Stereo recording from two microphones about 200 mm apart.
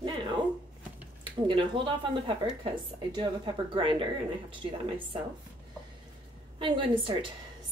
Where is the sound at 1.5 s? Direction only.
25° right (ahead or behind).